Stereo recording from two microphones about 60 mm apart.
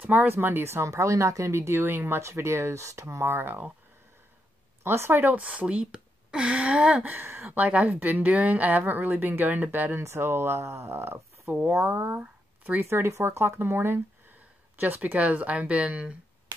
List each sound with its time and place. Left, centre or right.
0.0 s speech: right
0.8 s speech: right
4.8 s speech: right
5.4 s speech: right
7.0 s speech: right
7.5 s a woman's voice: right
10.0 s speech: right
12.2 s a sound: right
12.8 s speech: right
14.3 s speech: right